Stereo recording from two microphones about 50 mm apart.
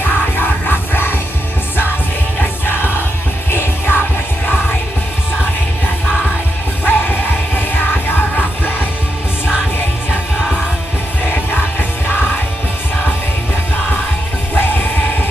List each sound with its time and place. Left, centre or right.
0.0 s music: left
2.6 s music: left
6.8 s music: left
14.5 s music: left